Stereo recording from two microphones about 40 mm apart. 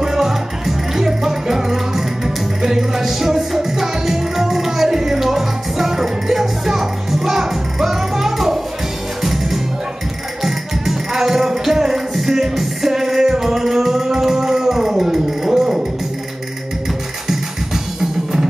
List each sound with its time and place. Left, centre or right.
0.0 s music: centre